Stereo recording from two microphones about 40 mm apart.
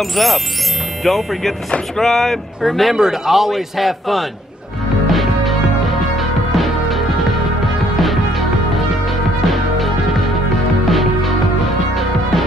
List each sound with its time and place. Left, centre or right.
0.0 s a man's voice: centre
5.0 s music: centre